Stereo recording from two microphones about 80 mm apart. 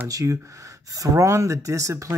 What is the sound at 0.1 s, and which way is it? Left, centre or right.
Speech, right.